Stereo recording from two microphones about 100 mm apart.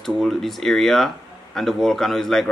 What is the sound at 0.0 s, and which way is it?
Speech, centre (ahead or behind).